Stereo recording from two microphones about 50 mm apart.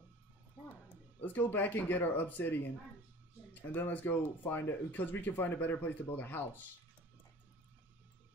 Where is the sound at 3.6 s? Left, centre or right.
Left.